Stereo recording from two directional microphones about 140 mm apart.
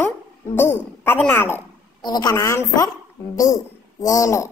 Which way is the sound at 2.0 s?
30° left (ahead or behind).